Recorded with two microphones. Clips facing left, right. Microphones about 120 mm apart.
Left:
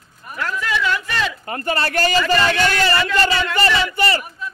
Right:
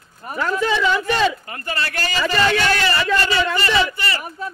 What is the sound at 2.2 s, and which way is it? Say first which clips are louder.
Speech: left 1 dB; 35° right (ahead or behind).